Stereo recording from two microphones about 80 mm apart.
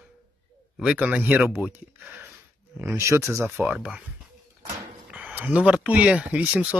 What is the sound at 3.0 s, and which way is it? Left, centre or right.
Speech, right.